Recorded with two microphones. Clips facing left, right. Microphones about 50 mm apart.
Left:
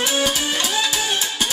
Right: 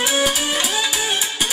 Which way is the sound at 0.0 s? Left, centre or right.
Centre.